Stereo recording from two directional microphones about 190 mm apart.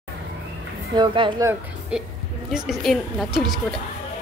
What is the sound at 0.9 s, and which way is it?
Speech, 25° right (ahead or behind).